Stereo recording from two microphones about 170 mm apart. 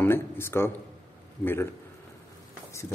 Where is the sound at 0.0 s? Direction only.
15° left (ahead or behind).